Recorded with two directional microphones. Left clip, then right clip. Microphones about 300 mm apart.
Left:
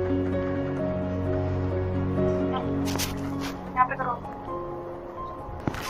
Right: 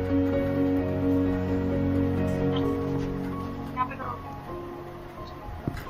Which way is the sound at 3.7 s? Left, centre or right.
Centre.